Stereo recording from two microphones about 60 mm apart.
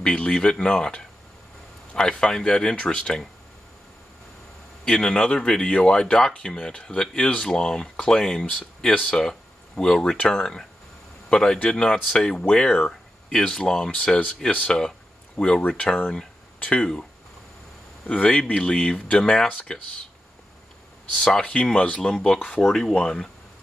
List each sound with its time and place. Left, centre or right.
0.0 s speech: centre
4.8 s speech: centre
18.0 s speech: centre
21.1 s speech: centre